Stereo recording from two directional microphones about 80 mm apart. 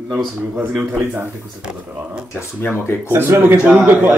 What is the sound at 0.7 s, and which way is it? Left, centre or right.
Speech, centre.